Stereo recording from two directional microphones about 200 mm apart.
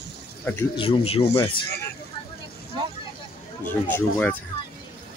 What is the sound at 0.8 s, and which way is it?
Speech, 30° left (ahead or behind).